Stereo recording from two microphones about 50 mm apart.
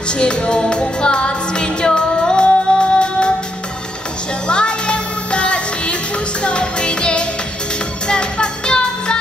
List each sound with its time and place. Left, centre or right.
0.1 s music: centre
4.5 s music: centre